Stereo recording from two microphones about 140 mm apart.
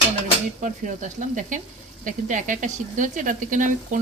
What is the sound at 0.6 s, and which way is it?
Stir, 65° right (ahead or behind).